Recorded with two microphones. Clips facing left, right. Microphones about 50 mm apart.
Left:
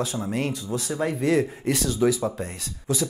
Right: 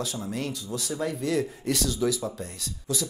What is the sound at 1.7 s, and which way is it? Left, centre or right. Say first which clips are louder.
Speech: left 4 dB; centre.